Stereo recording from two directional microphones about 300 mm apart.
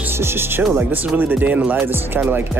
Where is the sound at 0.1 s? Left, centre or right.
Centre.